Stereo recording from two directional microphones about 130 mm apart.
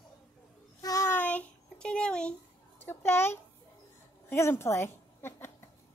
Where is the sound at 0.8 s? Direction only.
25° left (ahead or behind).